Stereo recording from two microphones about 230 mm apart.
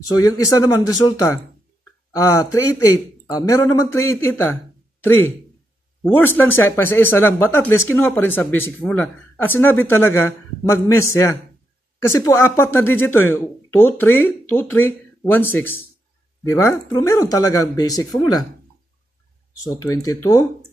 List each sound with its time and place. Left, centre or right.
0.1 s speech: centre
19.6 s speech: centre